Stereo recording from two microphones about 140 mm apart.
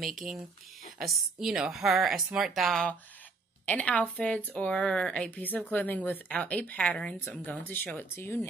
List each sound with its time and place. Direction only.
1.4 s a woman's voice: 5° right (ahead or behind); by 8.5 s 15° left (ahead or behind)